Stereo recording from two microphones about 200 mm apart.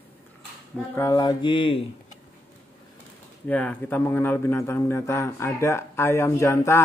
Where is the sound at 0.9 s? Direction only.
15° left (ahead or behind).